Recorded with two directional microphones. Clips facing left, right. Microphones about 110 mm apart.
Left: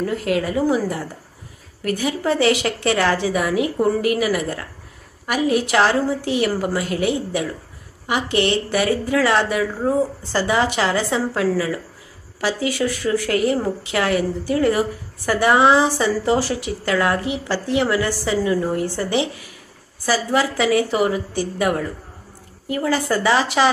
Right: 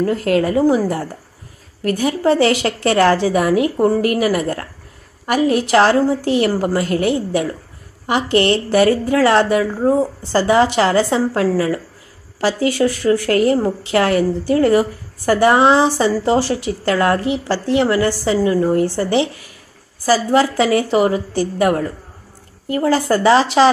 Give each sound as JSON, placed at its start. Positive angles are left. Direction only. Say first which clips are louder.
{"t": 0.0, "sound": "a woman's voice", "louder": "right 5 dB", "side_deg": -40}
{"t": 20.3, "sound": "a woman's voice", "louder": "right 1 dB", "side_deg": -35}